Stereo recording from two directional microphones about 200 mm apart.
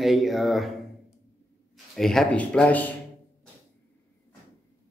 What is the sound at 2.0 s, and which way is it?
Speech, centre (ahead or behind).